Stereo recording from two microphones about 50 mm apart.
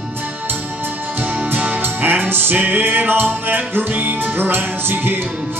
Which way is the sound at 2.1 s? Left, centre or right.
Right.